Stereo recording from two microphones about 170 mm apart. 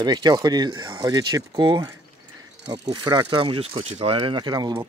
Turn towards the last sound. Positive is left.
turn(degrees=-25)  # may be behind; listen again after turning